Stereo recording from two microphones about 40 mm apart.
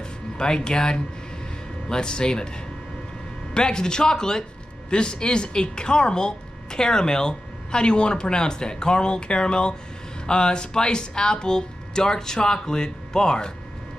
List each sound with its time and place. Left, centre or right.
0.4 s speech: centre
3.5 s speech: centre